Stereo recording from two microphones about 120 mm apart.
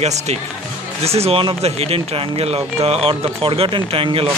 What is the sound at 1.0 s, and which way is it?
Speech, 60° right (ahead or behind).